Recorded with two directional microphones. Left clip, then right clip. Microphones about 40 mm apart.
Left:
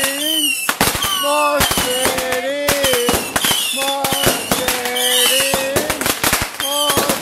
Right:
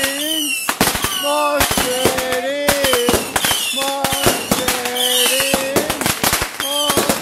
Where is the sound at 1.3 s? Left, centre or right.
Centre.